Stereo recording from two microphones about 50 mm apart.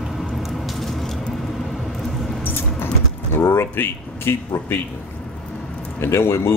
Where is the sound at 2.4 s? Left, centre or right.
Left.